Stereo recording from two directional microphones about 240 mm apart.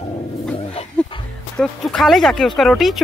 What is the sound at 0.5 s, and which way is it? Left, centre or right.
Dog, left.